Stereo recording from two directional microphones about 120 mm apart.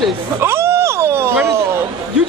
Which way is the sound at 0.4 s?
20° right (ahead or behind).